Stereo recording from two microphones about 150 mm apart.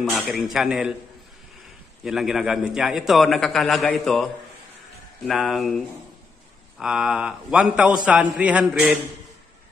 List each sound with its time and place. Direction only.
0.0 s a man's voice: centre (ahead or behind)
2.0 s a man's voice: centre (ahead or behind)